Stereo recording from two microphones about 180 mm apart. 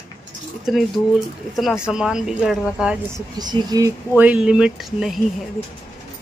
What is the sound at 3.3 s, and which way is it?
Speech, 25° right (ahead or behind).